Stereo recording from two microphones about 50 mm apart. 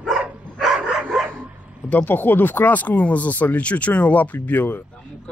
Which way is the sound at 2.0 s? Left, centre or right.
Left.